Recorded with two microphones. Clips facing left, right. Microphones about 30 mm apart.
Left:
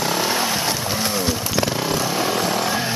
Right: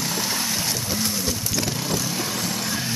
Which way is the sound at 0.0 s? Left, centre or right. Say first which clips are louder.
Left 6 dB; left.